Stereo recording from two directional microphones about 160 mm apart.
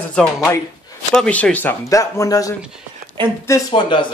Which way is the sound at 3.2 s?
30° right (ahead or behind).